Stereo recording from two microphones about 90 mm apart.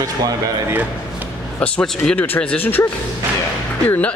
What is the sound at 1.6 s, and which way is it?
Speech, 15° left (ahead or behind).